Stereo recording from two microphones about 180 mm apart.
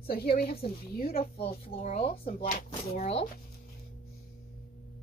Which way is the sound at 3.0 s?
35° left (ahead or behind).